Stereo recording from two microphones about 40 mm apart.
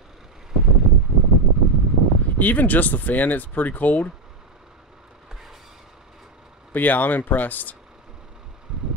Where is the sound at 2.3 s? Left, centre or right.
Left.